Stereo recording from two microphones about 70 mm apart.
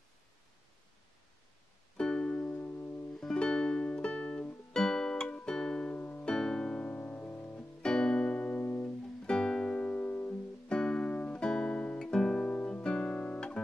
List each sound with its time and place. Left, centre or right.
2.0 s music: centre
2.5 s music: left
3.2 s music: centre
5.9 s music: left
6.3 s music: centre; by 7.6 s left
7.8 s music: centre
10.7 s music: centre
12.0 s guitar: centre